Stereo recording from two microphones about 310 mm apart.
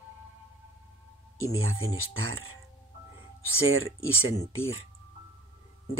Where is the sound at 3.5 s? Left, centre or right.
Right.